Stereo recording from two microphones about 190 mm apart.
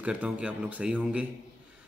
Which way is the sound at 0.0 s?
5° right (ahead or behind).